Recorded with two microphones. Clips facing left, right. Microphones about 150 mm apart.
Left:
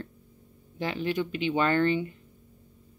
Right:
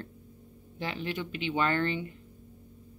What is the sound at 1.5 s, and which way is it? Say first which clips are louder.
Speech: left 3 dB; 20° left (ahead or behind).